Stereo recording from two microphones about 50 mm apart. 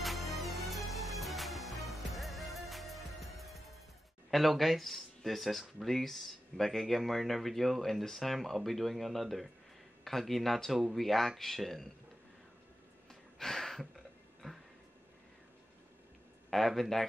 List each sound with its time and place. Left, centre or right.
0.0 s music: centre
4.3 s speech: centre
13.1 s a sound: centre
16.4 s speech: centre